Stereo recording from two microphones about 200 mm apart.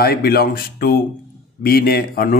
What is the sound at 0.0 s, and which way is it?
Speech, 50° left (ahead or behind).